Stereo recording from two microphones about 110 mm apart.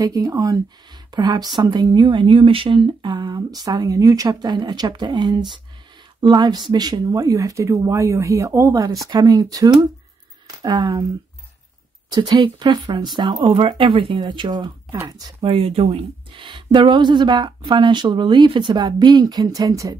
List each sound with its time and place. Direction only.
0.0 s speech: 35° right (ahead or behind)
12.1 s a woman's voice: 40° right (ahead or behind)
15.4 s a woman's voice: 60° right (ahead or behind); by 20.0 s 35° right (ahead or behind)